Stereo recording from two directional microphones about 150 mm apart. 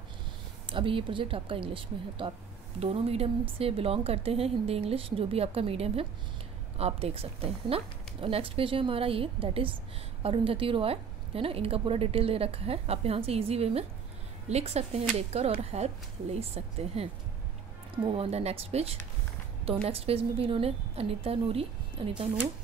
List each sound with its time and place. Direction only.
0.7 s a woman's voice: 35° right (ahead or behind)